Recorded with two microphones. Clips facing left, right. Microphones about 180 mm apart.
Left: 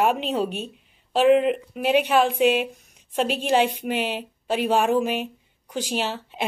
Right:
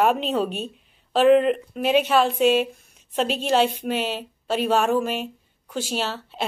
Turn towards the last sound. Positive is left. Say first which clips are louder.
# even
turn(degrees=15)  # may be behind; listen again after turning